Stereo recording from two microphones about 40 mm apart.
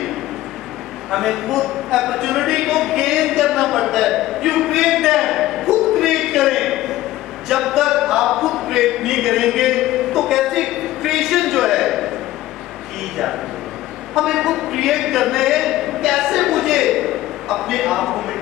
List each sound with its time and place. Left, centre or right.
1.1 s speech: centre
7.4 s a sound: centre
14.1 s a man's voice: centre